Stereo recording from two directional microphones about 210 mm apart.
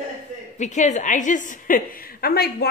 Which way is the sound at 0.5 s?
35° left (ahead or behind).